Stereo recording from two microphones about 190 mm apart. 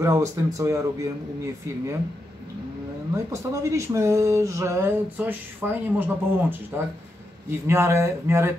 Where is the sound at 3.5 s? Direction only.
15° right (ahead or behind).